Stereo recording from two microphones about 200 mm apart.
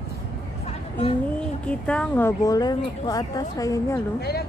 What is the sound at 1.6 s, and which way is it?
Speech, 5° left (ahead or behind).